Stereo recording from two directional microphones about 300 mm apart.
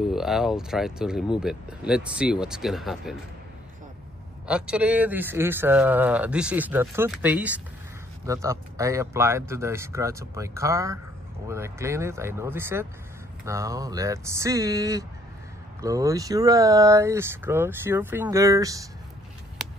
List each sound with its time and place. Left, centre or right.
0.0 s speech: centre
4.5 s speech: centre